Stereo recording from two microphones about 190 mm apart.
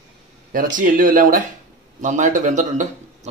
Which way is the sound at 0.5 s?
45° right (ahead or behind).